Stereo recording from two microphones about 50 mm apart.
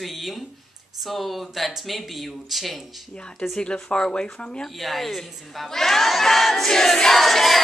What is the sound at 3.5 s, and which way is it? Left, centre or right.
Speech, centre.